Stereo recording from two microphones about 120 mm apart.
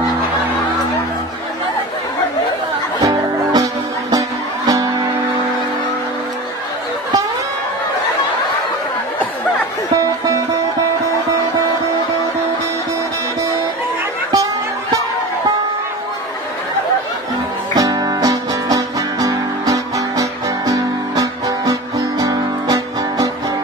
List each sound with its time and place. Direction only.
3.0 s music: 30° right (ahead or behind)
14.3 s chatter: 30° right (ahead or behind)
17.7 s music: 30° right (ahead or behind)